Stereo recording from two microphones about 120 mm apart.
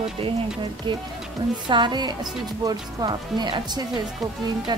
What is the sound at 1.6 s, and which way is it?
A woman's voice, 40° right (ahead or behind).